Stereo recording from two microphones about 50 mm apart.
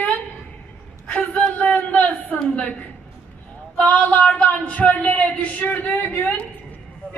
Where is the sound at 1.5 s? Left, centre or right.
Left.